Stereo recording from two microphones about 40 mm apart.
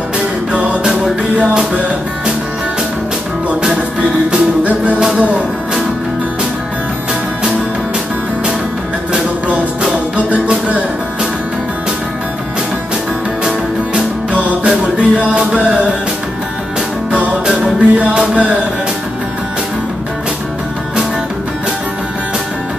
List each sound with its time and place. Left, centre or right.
1.5 s music: centre
4.6 s music: right
10.1 s music: right
14.6 s music: right
17.6 s music: right